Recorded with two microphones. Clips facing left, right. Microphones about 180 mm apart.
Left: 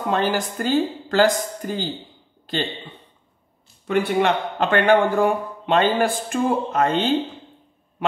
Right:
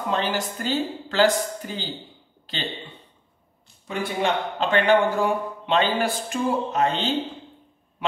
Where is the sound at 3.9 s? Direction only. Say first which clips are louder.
Left 5 dB; 60° left (ahead or behind).